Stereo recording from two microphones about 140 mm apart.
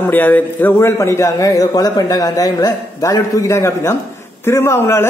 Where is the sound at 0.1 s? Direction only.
15° left (ahead or behind).